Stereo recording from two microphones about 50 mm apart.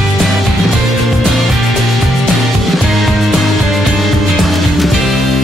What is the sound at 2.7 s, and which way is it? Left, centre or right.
Music, centre.